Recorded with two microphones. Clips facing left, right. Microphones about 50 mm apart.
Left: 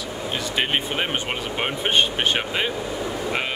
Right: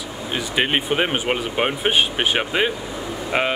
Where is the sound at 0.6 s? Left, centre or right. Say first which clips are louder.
Right 5 dB; centre.